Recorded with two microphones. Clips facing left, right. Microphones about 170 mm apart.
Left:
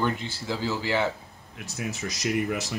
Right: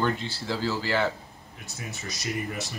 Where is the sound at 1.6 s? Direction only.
90° left.